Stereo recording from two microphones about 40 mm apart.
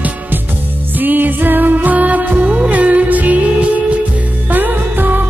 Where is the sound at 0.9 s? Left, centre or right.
Right.